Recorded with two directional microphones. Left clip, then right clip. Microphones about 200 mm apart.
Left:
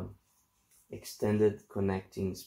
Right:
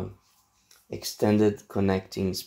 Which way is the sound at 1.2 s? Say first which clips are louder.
Right 5 dB; 25° right (ahead or behind).